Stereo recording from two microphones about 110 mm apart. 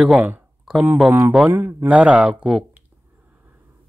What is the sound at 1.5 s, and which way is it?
A man's voice, 20° right (ahead or behind).